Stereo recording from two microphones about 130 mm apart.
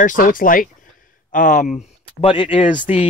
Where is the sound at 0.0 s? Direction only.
90° left.